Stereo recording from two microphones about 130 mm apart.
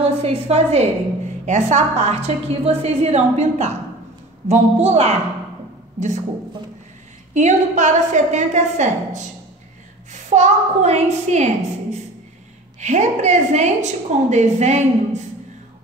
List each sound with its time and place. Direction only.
0.2 s a woman's voice: 50° right (ahead or behind)
5.9 s a man's voice: 65° right (ahead or behind)
7.3 s a woman's voice: 65° right (ahead or behind)
10.3 s a woman's voice: 60° right (ahead or behind)